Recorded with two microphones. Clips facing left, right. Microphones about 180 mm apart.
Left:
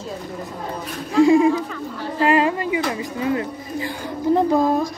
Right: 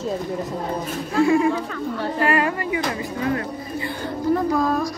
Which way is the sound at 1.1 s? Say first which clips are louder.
Left 4 dB; 15° left (ahead or behind).